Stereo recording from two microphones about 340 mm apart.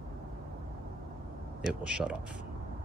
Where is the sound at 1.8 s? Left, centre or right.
Centre.